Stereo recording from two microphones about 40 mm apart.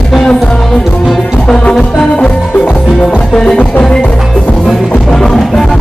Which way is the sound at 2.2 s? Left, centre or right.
Left.